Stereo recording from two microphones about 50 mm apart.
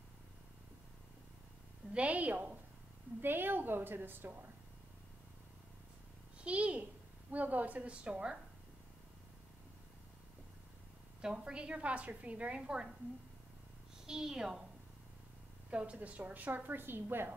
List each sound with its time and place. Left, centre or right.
2.0 s a woman's voice: right
3.2 s a woman's voice: right
6.4 s a child's voice: right
11.1 s a woman's voice: centre
14.0 s a woman's voice: centre
15.7 s a woman's voice: right